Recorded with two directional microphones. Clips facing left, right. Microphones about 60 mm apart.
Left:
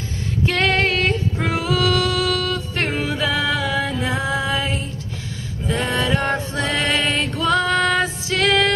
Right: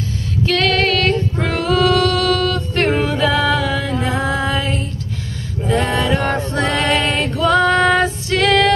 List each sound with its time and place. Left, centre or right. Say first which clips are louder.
0.5 s female singing: right 3 dB; left
1.4 s female singing: right 4 dB; centre
2.9 s music: right 5 dB; centre